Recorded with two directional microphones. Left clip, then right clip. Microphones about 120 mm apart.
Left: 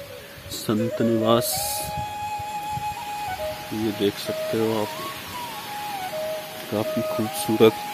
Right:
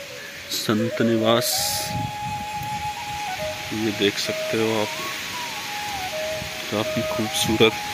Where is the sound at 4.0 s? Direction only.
Centre (ahead or behind).